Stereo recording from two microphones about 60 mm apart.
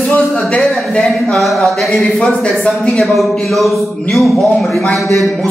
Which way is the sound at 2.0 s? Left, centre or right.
Centre.